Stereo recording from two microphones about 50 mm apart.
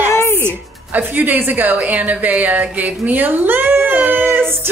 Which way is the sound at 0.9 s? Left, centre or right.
Right.